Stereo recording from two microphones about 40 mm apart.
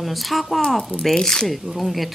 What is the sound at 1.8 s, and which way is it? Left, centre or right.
Speech, centre.